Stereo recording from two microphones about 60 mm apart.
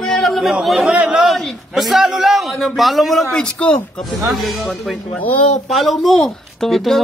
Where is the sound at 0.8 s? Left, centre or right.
Centre.